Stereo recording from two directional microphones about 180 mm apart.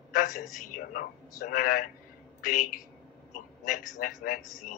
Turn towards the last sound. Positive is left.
turn(degrees=50)  # may be behind; listen again after turning